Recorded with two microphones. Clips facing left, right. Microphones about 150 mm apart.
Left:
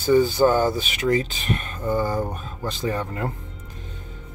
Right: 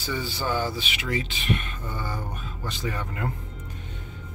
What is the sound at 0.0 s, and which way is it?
Speech, 45° left (ahead or behind).